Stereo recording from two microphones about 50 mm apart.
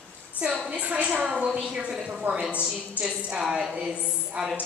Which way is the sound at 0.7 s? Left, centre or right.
Right.